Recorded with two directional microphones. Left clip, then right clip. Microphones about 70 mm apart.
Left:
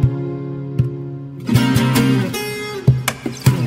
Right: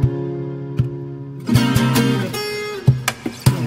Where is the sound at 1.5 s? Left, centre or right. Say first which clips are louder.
Left 1 dB; right.